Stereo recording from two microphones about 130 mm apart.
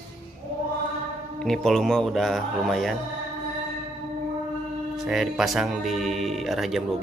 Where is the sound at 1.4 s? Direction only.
5° left (ahead or behind).